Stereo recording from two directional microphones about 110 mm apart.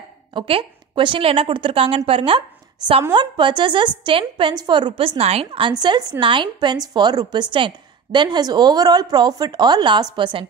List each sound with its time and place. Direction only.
0.3 s a woman's voice: 50° right (ahead or behind)
5.7 s a woman's voice: 40° right (ahead or behind)